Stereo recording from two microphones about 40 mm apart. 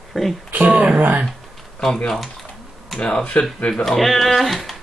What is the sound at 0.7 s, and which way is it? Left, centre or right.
Speech, right.